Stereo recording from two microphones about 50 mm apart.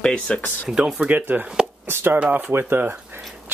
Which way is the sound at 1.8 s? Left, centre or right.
Right.